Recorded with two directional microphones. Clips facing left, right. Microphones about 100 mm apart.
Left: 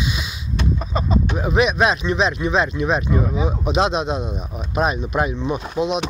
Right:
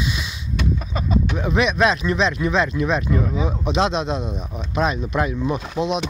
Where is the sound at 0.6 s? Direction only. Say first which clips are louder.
Left 2 dB; 30° left (ahead or behind).